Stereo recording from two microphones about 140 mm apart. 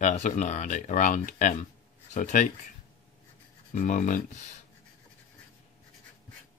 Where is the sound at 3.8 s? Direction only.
65° left (ahead or behind).